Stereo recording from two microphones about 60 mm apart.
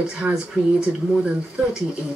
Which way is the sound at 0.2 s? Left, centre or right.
Right.